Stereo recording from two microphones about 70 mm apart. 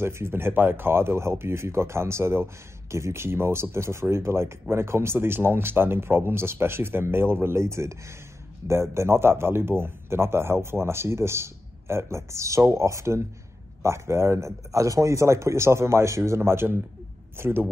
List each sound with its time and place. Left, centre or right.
0.0 s a man's voice: right